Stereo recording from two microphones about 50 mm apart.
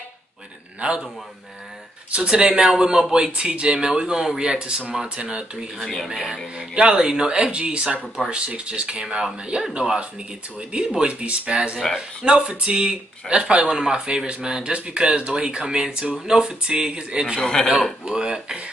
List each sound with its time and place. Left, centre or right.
0.7 s speech: right
2.2 s speech: centre
5.8 s speech: centre
6.7 s speech: centre
13.7 s speech: centre
17.4 s speech: centre
18.0 s speech: centre